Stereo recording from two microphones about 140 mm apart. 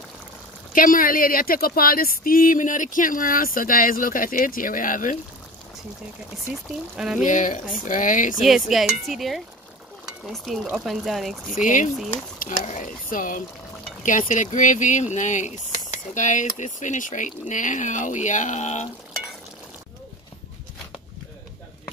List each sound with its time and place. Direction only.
0.7 s speech: 75° left (ahead or behind)
7.0 s speech: 5° right (ahead or behind)
7.2 s speech: 65° left (ahead or behind)
8.4 s speech: centre (ahead or behind)
11.5 s speech: 65° left (ahead or behind)